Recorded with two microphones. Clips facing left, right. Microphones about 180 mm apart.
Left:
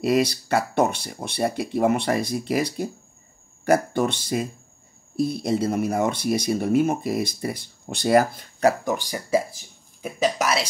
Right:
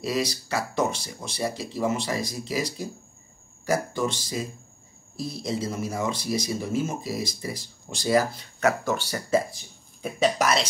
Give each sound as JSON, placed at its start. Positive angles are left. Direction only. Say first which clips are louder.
{"t": 0.0, "sound": "speech", "louder": "left 7 dB", "side_deg": 60}
{"t": 8.8, "sound": "speech", "louder": "left 1 dB", "side_deg": 15}
{"t": 10.0, "sound": "speech", "louder": "even", "side_deg": 5}